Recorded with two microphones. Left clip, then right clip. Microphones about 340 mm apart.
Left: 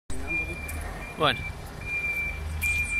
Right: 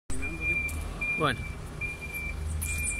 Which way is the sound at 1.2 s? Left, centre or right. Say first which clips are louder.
Left 6 dB; centre.